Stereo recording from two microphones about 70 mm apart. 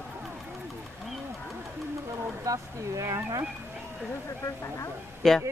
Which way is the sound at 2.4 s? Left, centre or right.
Right.